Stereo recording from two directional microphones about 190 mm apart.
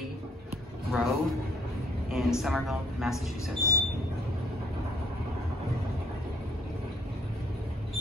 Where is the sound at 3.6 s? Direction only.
15° left (ahead or behind).